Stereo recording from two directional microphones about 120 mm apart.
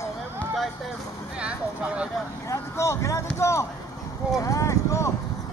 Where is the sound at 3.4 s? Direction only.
25° left (ahead or behind).